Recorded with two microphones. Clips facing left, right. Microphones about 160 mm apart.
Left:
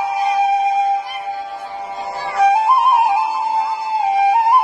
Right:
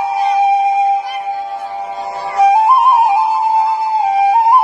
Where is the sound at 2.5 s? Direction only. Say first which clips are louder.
Right 5 dB; 20° right (ahead or behind).